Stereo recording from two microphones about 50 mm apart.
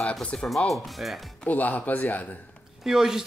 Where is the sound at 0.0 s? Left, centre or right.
Centre.